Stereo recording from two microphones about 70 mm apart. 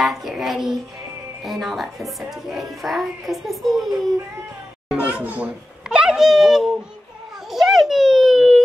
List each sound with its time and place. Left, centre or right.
0.0 s a woman's voice: centre
4.8 s a child's voice: centre
5.9 s a woman's voice: centre
7.5 s a sound: centre